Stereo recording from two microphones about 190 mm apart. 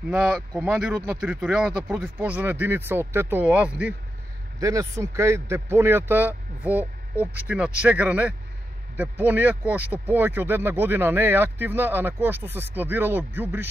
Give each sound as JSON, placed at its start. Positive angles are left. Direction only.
{"t": 0.1, "sound": "speech", "side_deg": -5}
{"t": 4.6, "sound": "speech", "side_deg": -15}